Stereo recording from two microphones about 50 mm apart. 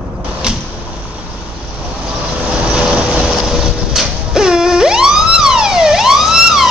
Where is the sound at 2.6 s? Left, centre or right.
Centre.